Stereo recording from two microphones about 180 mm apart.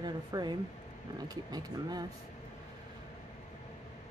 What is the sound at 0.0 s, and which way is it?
Speech, 25° right (ahead or behind).